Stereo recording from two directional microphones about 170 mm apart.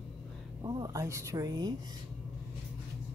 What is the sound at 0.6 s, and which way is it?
Speech, 20° right (ahead or behind).